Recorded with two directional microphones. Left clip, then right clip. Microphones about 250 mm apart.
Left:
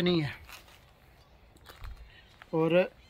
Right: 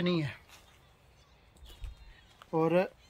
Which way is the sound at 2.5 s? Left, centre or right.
Centre.